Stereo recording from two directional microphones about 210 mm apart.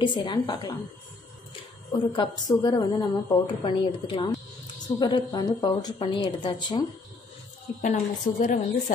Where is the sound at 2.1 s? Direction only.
20° left (ahead or behind).